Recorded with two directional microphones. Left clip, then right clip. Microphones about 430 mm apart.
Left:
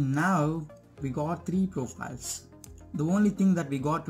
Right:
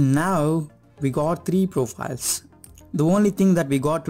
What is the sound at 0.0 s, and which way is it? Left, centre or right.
Speech, right.